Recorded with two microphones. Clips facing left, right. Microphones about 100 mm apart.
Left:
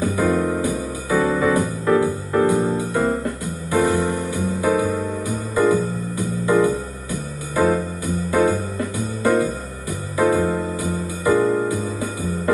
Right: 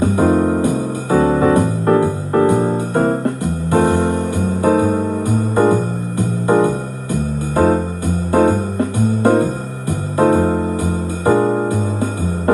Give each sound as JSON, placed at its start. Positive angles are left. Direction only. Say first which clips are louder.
{"t": 0.0, "sound": "music", "louder": "right 5 dB", "side_deg": -50}